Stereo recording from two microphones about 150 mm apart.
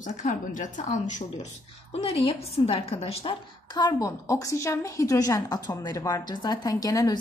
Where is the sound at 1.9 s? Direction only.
40° left (ahead or behind).